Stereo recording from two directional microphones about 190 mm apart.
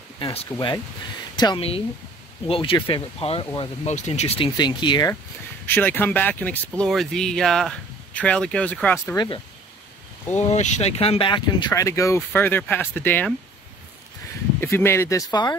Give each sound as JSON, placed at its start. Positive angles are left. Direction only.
{"t": 0.2, "sound": "speech", "side_deg": 30}
{"t": 5.7, "sound": "speech", "side_deg": 10}
{"t": 10.3, "sound": "speech", "side_deg": 35}
{"t": 14.6, "sound": "speech", "side_deg": 10}